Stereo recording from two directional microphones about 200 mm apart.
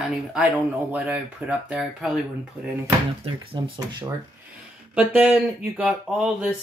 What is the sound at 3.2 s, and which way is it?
Speech, 25° right (ahead or behind).